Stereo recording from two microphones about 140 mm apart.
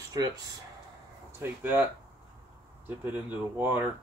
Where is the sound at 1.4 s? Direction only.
15° right (ahead or behind).